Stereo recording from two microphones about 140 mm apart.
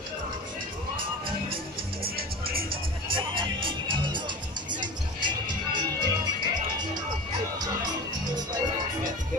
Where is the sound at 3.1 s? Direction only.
35° right (ahead or behind).